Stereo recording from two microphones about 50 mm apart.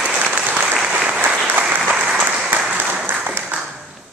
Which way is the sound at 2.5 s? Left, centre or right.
Right.